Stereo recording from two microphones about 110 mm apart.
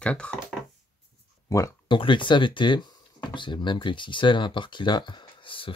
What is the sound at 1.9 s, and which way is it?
Speech, 50° left (ahead or behind).